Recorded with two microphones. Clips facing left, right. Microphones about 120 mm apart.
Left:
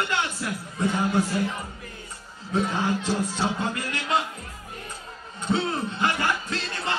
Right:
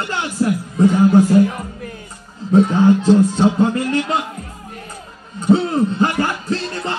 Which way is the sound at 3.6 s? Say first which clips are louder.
Right 13 dB; 35° right (ahead or behind).